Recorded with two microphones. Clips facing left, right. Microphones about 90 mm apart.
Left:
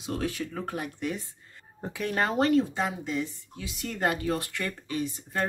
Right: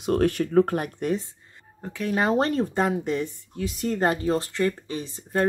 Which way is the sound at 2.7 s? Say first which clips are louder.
Right 6 dB; 50° right (ahead or behind).